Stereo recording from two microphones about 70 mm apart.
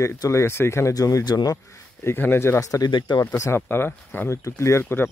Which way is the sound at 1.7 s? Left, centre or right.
Left.